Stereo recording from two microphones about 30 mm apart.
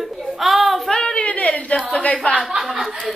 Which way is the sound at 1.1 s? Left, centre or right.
Left.